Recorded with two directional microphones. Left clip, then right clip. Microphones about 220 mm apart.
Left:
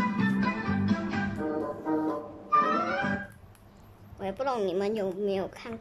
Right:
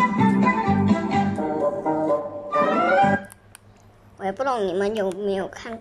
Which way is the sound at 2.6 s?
30° right (ahead or behind).